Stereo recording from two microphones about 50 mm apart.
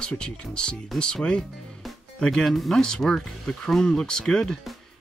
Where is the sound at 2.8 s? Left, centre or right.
Centre.